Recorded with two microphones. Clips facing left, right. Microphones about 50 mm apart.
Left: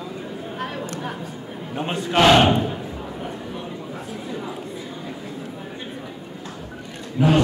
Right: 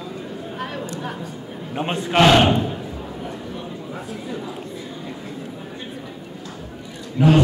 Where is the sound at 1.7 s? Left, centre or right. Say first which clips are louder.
Right 2 dB; centre.